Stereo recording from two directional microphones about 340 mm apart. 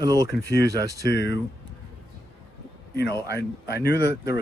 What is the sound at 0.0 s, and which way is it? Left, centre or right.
Speech, centre.